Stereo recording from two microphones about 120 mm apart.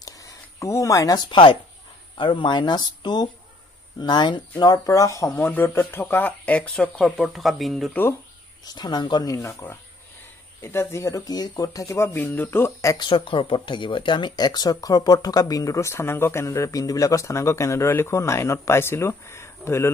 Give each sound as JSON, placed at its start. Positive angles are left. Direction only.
{"t": 0.0, "sound": "a sound", "side_deg": 30}
{"t": 2.1, "sound": "speech", "side_deg": 40}
{"t": 7.9, "sound": "speech", "side_deg": 20}
{"t": 8.6, "sound": "speech", "side_deg": 40}
{"t": 12.9, "sound": "speech", "side_deg": 45}